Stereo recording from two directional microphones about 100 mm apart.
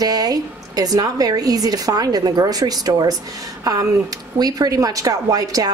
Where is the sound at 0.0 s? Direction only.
40° right (ahead or behind).